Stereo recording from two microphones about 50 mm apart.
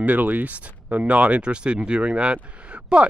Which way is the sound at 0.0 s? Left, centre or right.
Right.